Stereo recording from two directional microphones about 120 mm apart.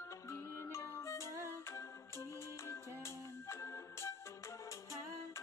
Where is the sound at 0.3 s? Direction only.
25° left (ahead or behind).